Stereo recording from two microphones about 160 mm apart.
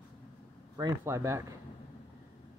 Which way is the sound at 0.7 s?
20° right (ahead or behind).